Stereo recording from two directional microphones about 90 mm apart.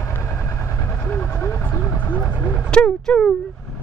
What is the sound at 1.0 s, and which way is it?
Vehicle, 20° left (ahead or behind).